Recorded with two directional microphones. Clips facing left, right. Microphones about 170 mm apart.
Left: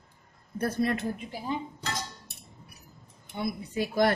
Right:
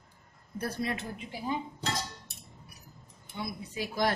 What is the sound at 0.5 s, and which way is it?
Speech, 50° left (ahead or behind).